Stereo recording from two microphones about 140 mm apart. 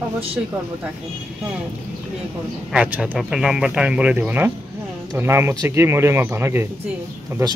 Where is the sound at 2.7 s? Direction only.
5° right (ahead or behind).